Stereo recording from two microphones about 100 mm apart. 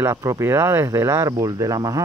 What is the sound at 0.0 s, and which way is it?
Speech, 35° right (ahead or behind).